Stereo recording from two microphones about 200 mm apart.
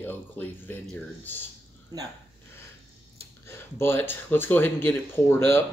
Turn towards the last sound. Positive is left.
turn(degrees=10)  # may be behind; listen again after turning